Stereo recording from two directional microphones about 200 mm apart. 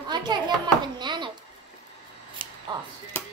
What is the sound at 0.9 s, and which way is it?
Babbling, 20° right (ahead or behind).